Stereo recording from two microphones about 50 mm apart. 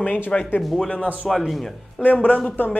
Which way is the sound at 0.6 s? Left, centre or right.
Centre.